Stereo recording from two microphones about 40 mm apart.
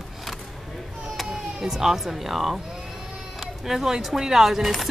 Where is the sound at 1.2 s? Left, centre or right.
Centre.